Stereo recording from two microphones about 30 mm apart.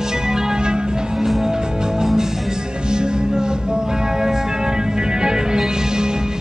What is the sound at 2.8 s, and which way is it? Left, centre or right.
Music, right.